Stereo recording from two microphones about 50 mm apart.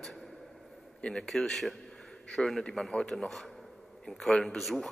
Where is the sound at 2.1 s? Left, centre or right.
Centre.